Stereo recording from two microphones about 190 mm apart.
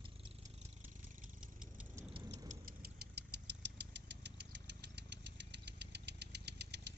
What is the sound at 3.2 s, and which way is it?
Engine, 60° right (ahead or behind).